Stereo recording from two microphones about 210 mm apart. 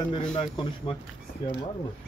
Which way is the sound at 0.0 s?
20° left (ahead or behind).